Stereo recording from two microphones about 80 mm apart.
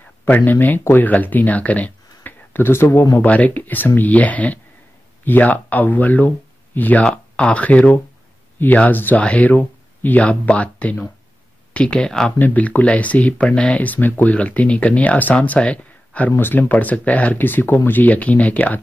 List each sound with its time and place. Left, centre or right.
0.0 s speech: left
3.2 s speech: centre
12.4 s speech: left